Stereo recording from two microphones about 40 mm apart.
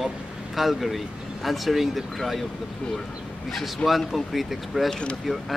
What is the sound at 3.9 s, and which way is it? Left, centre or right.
Speech, centre.